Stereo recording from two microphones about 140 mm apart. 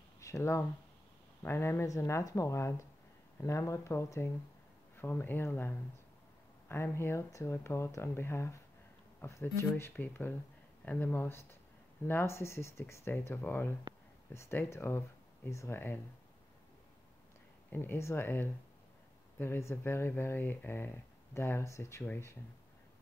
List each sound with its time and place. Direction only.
0.2 s speech: 20° left (ahead or behind)
17.6 s speech: 15° left (ahead or behind)